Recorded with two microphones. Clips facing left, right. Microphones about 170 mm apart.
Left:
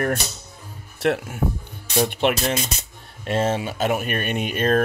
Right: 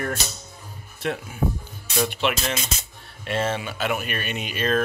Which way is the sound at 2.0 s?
55° left (ahead or behind).